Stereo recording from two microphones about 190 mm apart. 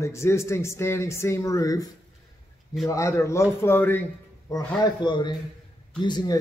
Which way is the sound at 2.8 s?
15° left (ahead or behind).